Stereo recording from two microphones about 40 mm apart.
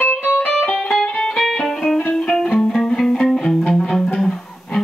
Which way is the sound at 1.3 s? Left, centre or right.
Centre.